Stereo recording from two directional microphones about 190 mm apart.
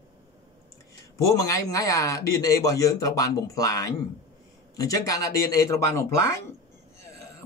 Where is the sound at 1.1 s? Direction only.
15° left (ahead or behind).